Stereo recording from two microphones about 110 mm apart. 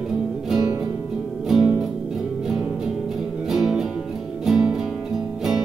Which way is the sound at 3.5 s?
5° right (ahead or behind).